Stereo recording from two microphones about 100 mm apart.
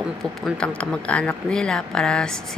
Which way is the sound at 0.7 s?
10° left (ahead or behind).